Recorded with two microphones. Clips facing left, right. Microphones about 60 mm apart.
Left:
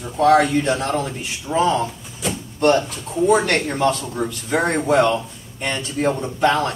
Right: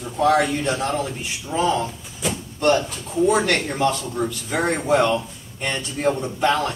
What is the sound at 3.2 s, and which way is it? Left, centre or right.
Speech, centre.